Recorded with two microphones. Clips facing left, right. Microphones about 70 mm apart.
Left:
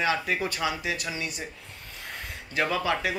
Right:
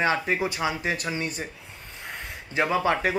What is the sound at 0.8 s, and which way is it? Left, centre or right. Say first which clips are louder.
Speech: right 3 dB; right.